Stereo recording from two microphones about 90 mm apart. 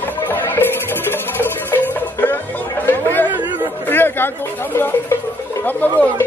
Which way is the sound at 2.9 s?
20° left (ahead or behind).